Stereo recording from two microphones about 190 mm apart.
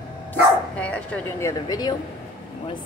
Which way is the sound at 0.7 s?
5° left (ahead or behind).